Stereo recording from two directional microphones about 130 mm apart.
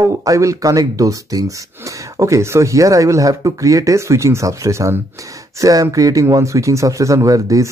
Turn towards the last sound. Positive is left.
turn(degrees=-25)  # may be behind; listen again after turning